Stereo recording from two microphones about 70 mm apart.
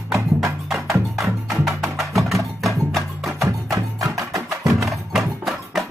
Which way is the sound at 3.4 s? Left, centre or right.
Right.